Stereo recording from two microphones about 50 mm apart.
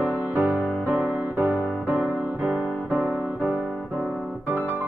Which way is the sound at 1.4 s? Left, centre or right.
Right.